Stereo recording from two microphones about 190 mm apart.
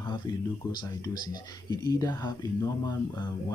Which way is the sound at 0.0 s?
20° left (ahead or behind).